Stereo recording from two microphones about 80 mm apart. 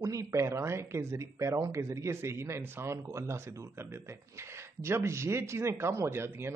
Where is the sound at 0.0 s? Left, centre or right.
Right.